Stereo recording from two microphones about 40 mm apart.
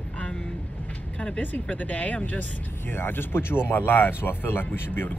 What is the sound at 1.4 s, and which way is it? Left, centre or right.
Speech, left.